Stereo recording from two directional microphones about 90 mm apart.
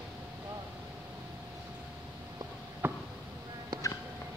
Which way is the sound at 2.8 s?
25° right (ahead or behind).